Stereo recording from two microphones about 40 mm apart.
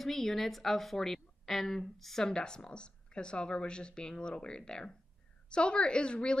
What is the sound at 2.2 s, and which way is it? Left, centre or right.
Speech, centre.